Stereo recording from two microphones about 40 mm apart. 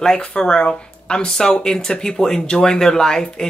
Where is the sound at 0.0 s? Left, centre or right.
Centre.